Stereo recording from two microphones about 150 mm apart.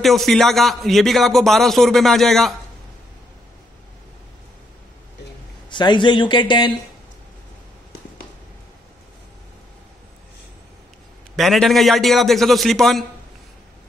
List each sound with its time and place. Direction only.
0.0 s a man's voice: centre (ahead or behind)
5.7 s speech: 30° left (ahead or behind)
11.3 s a man's voice: centre (ahead or behind)